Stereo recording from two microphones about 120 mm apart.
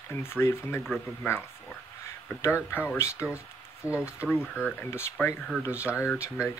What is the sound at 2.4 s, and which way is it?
Speech, 20° left (ahead or behind).